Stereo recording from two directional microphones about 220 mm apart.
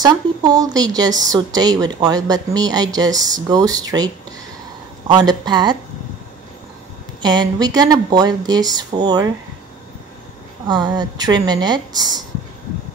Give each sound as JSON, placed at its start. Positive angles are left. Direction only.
{"t": 0.0, "sound": "a woman's voice", "side_deg": -15}
{"t": 7.2, "sound": "speech", "side_deg": -20}
{"t": 10.7, "sound": "a woman's voice", "side_deg": -20}